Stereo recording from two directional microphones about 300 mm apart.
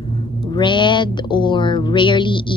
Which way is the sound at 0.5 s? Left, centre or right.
Centre.